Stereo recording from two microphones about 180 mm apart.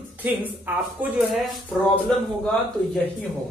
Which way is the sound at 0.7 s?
10° right (ahead or behind).